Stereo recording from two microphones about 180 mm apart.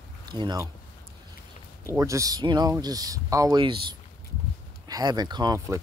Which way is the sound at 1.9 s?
15° right (ahead or behind).